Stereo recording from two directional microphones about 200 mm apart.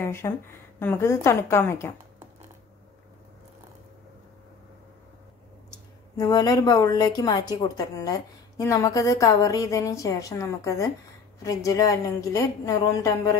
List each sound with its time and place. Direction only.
0.0 s a woman's voice: 10° left (ahead or behind)
6.1 s a woman's voice: 20° left (ahead or behind)